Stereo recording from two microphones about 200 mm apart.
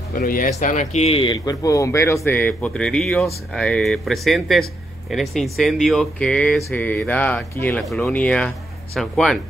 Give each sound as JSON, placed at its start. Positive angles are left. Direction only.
{"t": 0.2, "sound": "speech", "side_deg": 45}